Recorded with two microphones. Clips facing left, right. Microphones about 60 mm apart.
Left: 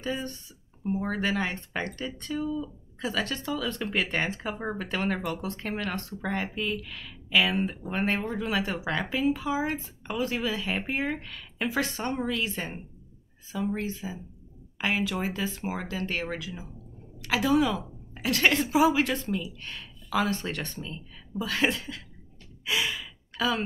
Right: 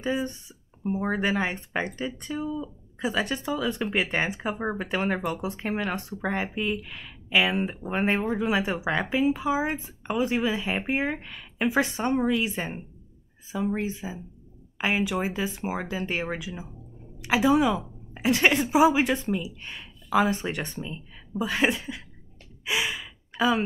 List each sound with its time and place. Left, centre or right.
0.0 s a woman's voice: centre
22.7 s gasp: centre